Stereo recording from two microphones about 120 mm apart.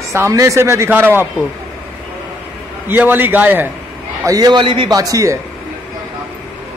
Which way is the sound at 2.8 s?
15° right (ahead or behind).